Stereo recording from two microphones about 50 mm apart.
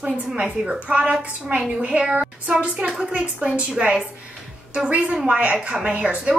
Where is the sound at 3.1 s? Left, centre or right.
Right.